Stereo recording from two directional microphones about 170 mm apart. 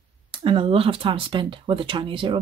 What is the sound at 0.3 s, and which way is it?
A woman's voice, 30° right (ahead or behind).